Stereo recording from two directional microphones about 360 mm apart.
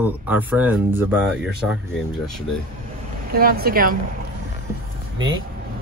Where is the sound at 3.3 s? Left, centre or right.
Right.